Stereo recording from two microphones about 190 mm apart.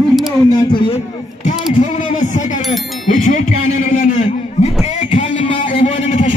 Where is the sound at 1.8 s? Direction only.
40° left (ahead or behind).